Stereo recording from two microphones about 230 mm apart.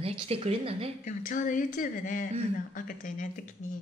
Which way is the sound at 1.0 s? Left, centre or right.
Left.